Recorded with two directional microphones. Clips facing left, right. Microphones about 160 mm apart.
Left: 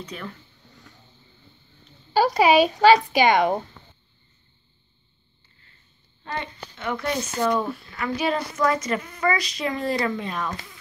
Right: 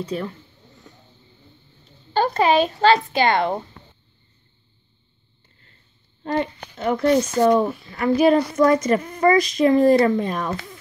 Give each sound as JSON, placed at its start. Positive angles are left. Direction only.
{"t": 0.0, "sound": "speech", "side_deg": -30}
{"t": 2.1, "sound": "speech", "side_deg": 10}
{"t": 6.2, "sound": "a woman's voice", "side_deg": -40}